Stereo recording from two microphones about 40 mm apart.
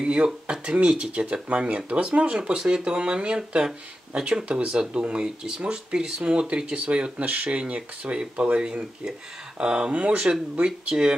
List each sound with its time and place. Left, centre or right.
0.0 s speech: right
10.6 s speech: right